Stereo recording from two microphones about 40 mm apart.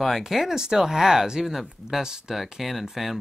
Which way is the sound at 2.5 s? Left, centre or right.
Centre.